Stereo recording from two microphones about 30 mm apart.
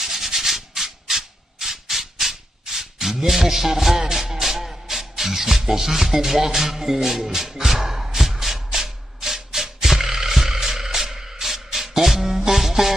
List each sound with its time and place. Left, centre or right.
0.0 s rub: centre
4.1 s music: centre